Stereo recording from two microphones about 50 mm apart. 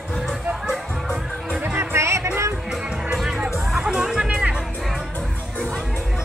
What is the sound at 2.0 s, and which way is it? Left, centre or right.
Music, right.